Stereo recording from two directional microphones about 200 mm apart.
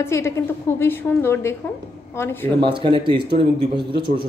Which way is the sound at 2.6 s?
25° right (ahead or behind).